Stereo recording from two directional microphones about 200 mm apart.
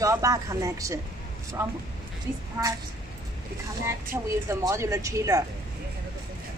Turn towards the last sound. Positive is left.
turn(degrees=-15)  # may be behind; listen again after turning